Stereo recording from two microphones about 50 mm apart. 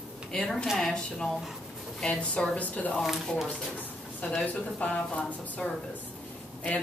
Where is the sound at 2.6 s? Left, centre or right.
Left.